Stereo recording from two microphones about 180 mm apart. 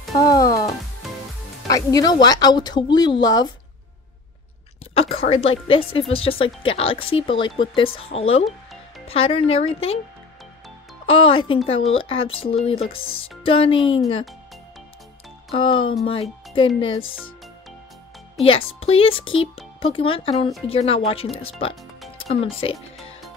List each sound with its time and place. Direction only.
1.7 s speech: 20° left (ahead or behind)
4.9 s a woman's voice: 35° left (ahead or behind)
11.1 s speech: 30° left (ahead or behind)
15.5 s speech: 30° left (ahead or behind)
18.4 s speech: 30° left (ahead or behind)